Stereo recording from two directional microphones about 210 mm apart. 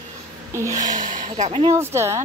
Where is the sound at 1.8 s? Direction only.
10° right (ahead or behind).